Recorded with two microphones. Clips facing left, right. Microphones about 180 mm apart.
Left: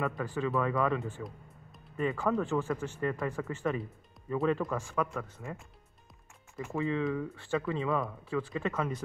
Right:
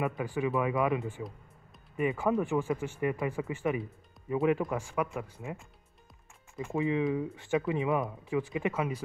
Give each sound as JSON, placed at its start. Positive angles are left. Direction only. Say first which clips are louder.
{"t": 0.0, "sound": "speech", "louder": "right 1 dB", "side_deg": -15}
{"t": 6.6, "sound": "speech", "louder": "right 2 dB", "side_deg": -15}